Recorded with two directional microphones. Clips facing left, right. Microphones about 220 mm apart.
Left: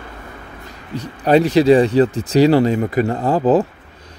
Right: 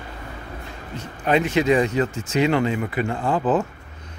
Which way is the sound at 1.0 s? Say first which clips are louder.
Left 7 dB; 35° left (ahead or behind).